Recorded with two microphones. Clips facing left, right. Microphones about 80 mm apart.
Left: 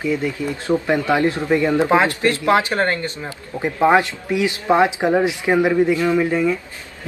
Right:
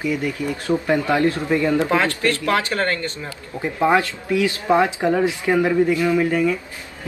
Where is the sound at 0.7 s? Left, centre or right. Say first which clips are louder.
Left 1 dB; centre.